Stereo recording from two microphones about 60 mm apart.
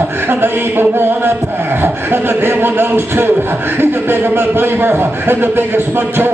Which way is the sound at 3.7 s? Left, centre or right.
Right.